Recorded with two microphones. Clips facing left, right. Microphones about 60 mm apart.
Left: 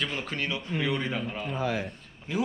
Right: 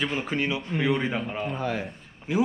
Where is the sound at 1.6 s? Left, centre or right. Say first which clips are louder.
Left 3 dB; right.